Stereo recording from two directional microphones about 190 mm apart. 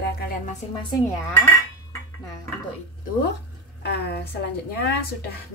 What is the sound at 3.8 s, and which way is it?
Speech, 60° left (ahead or behind).